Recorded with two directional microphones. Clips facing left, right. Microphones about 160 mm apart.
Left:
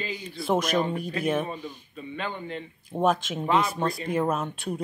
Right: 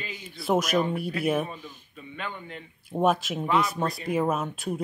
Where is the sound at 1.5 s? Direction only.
35° left (ahead or behind).